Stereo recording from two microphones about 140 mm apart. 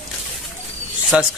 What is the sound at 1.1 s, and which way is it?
Speech, 5° right (ahead or behind).